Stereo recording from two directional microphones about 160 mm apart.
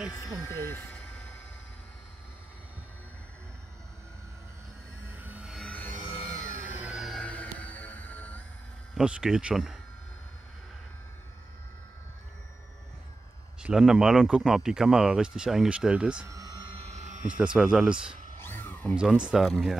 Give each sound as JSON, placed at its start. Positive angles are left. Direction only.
{"t": 0.2, "sound": "speech", "side_deg": 15}
{"t": 5.1, "sound": "train wheels squealing", "side_deg": -10}
{"t": 5.7, "sound": "music", "side_deg": 10}
{"t": 6.5, "sound": "music", "side_deg": -10}
{"t": 8.9, "sound": "speech", "side_deg": -5}
{"t": 13.6, "sound": "speech", "side_deg": -5}
{"t": 16.3, "sound": "a sound", "side_deg": -20}
{"t": 17.4, "sound": "speech", "side_deg": -5}
{"t": 18.4, "sound": "a sound", "side_deg": 15}
{"t": 18.9, "sound": "speech", "side_deg": -5}